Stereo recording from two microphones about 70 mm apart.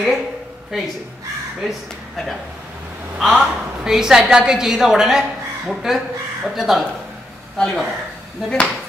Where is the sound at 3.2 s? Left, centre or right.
Centre.